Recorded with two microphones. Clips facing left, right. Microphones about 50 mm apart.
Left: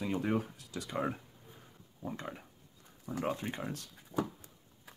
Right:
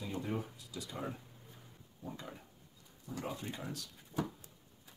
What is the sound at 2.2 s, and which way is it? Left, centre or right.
Speech, left.